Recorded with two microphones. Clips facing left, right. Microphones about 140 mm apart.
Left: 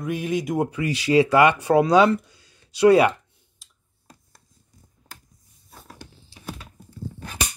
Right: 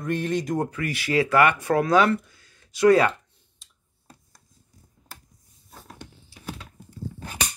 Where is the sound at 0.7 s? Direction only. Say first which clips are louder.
Left 5 dB; 20° left (ahead or behind).